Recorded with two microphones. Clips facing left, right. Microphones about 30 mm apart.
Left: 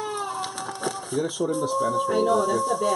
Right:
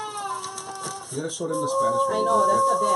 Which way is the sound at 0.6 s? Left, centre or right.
Left.